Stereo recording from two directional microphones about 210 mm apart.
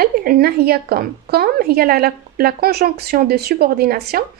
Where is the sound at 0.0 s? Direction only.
45° right (ahead or behind).